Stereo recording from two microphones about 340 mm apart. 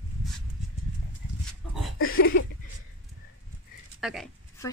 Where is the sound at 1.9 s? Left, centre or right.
Left.